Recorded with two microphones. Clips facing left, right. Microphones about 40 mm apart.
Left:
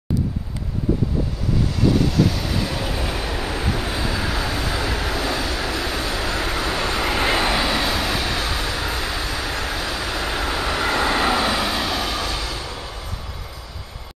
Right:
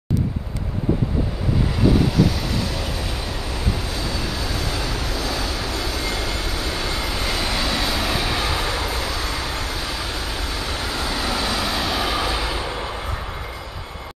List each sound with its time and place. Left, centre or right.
1.8 s train: centre
5.7 s vehicle: left
7.6 s train: centre
9.5 s vehicle: left
9.8 s vehicle: centre
10.1 s vehicle: left; by 12.9 s right